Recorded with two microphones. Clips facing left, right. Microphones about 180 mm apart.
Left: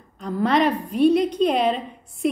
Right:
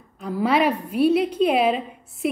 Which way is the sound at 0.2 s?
5° right (ahead or behind).